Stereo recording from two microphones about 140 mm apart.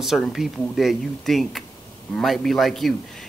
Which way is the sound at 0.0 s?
Centre (ahead or behind).